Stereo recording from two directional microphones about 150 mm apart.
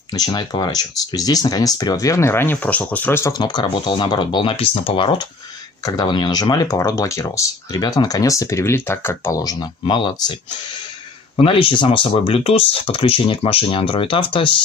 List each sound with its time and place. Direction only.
0.1 s speech: 25° left (ahead or behind)
11.4 s speech: 35° left (ahead or behind)